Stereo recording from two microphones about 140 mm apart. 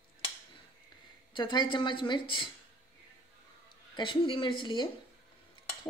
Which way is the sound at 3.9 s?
35° left (ahead or behind).